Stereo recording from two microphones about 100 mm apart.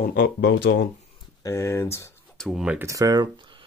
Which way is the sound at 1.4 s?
30° left (ahead or behind).